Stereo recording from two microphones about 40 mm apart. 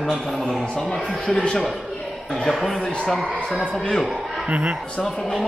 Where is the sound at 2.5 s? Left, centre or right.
Centre.